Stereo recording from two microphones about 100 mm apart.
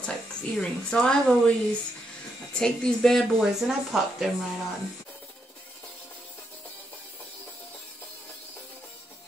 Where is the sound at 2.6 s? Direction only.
5° left (ahead or behind).